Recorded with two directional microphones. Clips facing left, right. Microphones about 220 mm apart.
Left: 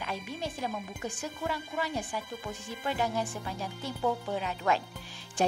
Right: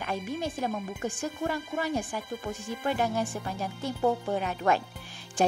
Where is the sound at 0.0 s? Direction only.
50° right (ahead or behind).